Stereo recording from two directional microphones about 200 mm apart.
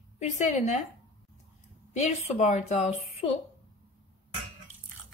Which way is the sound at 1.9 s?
35° left (ahead or behind).